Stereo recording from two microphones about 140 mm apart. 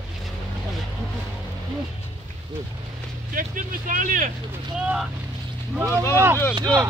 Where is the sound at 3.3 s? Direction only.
70° right (ahead or behind).